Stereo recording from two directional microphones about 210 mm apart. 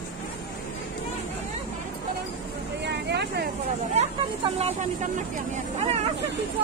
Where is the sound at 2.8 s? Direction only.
55° right (ahead or behind).